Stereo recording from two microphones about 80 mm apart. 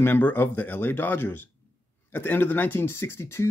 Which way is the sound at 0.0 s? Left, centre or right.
Left.